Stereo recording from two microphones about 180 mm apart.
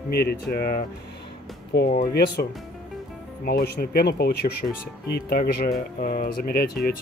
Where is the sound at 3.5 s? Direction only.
60° left (ahead or behind).